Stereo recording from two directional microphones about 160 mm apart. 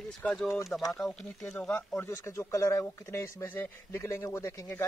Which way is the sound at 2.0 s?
15° left (ahead or behind).